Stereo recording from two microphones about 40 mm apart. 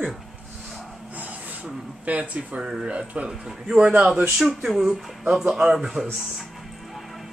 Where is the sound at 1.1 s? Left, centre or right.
Right.